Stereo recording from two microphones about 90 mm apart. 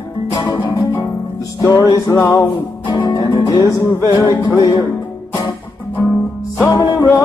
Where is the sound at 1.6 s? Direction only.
35° left (ahead or behind).